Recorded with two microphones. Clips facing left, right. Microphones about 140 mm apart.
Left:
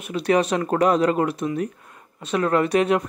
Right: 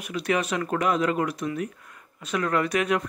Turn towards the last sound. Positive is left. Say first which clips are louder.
# left 5 dB
turn(degrees=30)  # may be behind; listen again after turning